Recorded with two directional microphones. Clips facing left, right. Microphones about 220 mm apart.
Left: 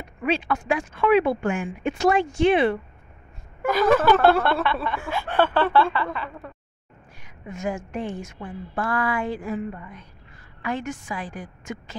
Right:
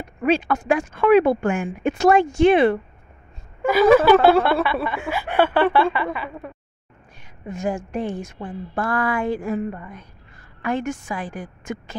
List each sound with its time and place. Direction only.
0.2 s speech: 45° right (ahead or behind)
3.6 s a sound: 5° right (ahead or behind)
7.4 s a woman's voice: 30° right (ahead or behind); by 11.8 s 50° right (ahead or behind)